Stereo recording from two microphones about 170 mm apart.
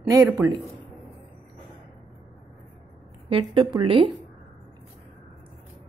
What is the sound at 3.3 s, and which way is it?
Speech, 30° right (ahead or behind).